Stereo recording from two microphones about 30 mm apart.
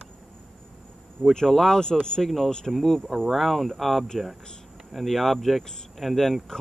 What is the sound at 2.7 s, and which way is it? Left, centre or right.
Speech, centre.